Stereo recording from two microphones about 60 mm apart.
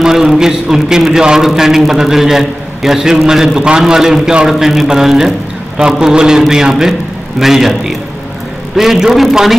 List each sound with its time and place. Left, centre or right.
0.0 s a man's voice: centre